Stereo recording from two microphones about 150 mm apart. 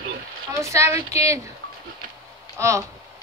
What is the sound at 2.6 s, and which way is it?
Speech, 20° right (ahead or behind).